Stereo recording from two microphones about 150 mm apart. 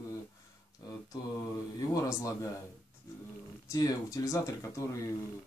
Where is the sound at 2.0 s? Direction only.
20° left (ahead or behind).